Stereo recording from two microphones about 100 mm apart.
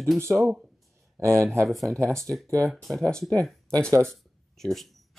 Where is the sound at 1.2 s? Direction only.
30° right (ahead or behind).